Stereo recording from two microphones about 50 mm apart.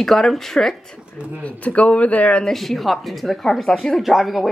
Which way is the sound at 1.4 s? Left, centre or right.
Left.